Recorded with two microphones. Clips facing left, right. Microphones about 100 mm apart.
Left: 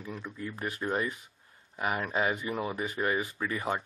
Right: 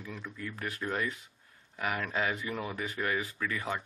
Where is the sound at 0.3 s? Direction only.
20° left (ahead or behind).